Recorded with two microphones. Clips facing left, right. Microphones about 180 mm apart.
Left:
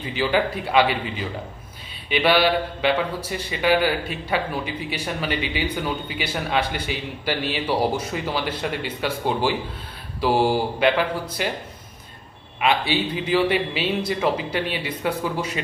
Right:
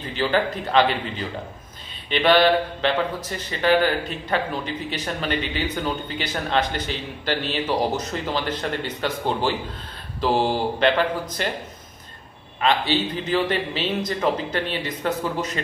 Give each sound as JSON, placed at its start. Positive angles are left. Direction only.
{"t": 0.0, "sound": "a man's voice", "side_deg": 10}
{"t": 12.5, "sound": "a man's voice", "side_deg": 10}